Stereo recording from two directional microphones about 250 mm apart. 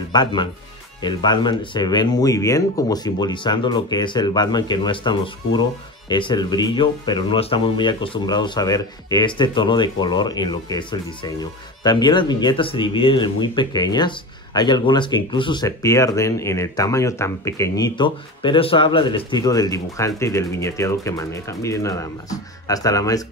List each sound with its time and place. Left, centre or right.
0.1 s speech: centre